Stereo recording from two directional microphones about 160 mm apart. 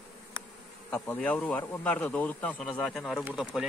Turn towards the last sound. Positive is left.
turn(degrees=-5)  # may be behind; listen again after turning